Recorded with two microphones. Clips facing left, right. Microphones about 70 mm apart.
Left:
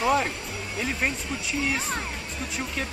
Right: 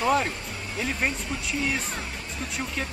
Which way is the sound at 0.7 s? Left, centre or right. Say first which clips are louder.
Even; centre.